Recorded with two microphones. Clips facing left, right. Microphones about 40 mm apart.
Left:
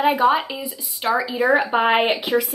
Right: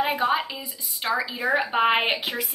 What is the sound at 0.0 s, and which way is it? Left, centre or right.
Speech, centre.